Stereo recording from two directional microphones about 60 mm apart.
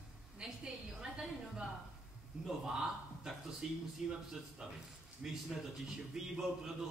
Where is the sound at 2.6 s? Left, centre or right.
Centre.